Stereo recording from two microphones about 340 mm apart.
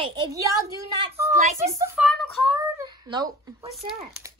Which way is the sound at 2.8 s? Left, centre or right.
Centre.